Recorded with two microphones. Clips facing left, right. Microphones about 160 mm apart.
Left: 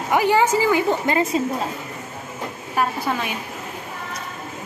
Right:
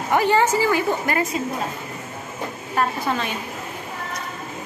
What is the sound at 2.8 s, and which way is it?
Speech, 10° left (ahead or behind).